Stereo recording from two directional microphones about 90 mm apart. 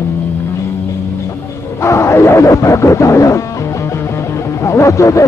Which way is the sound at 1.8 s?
35° left (ahead or behind).